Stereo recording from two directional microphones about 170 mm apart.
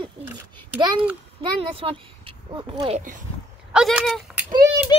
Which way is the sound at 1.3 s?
35° right (ahead or behind).